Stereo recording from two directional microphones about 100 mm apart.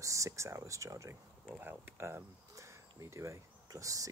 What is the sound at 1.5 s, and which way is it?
Speech, 20° right (ahead or behind).